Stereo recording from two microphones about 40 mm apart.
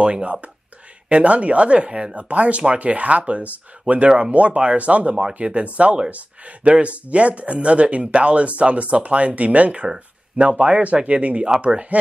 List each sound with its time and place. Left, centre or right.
0.0 s speech: right
9.9 s a sound: right
10.6 s speech: right